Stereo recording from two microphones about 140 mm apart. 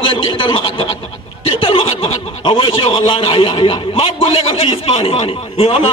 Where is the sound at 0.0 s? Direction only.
40° left (ahead or behind).